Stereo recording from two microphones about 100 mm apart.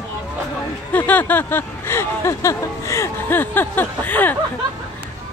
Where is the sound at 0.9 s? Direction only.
15° left (ahead or behind).